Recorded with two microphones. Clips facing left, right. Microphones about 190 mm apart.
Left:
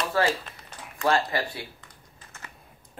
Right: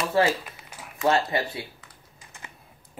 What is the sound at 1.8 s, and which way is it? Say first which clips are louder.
Typing: even; 15° right (ahead or behind).